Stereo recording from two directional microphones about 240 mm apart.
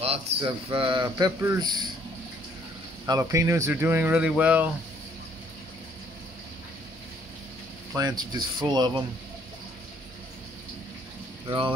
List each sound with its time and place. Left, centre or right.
0.0 s speech: right
3.1 s speech: centre
7.9 s speech: centre
11.4 s speech: right